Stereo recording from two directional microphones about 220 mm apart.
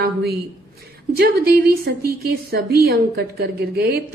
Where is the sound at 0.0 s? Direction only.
45° right (ahead or behind).